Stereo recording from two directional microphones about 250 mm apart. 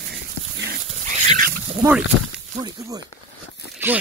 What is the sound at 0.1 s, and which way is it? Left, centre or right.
Dog, right.